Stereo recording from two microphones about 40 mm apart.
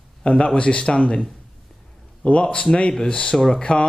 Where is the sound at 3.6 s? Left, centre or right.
Left.